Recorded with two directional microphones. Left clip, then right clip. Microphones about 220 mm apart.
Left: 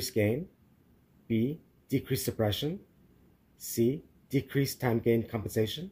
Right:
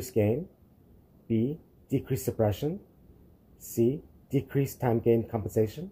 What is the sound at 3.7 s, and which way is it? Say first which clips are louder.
Speech: right 2 dB; 10° left (ahead or behind).